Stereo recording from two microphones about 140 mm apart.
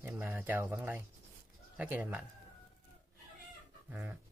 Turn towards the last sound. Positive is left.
turn(degrees=-15)  # may be behind; listen again after turning